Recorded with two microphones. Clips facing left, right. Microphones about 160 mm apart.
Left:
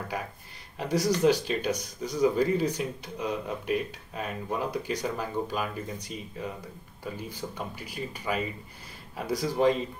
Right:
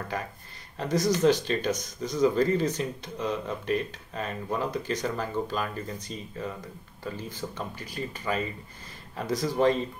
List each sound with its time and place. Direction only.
0.7 s speech: 10° left (ahead or behind)